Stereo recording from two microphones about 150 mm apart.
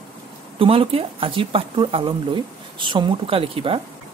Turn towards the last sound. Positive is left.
turn(degrees=-35)  # may be behind; listen again after turning